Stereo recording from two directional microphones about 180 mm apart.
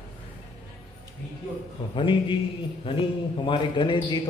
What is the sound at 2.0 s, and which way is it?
A man's voice, 30° left (ahead or behind).